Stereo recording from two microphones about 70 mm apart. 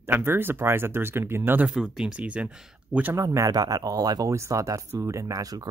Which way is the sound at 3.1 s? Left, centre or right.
Right.